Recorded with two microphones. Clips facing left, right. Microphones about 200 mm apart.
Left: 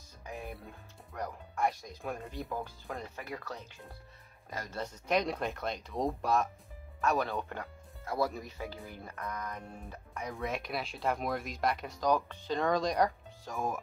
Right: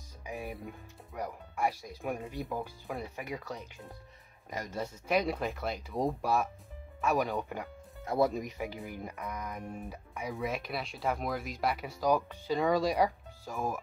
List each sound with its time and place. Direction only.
0.2 s speech: 10° right (ahead or behind)
5.0 s speech: 5° right (ahead or behind)